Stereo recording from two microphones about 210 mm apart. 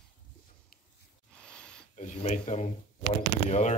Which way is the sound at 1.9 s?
30° left (ahead or behind).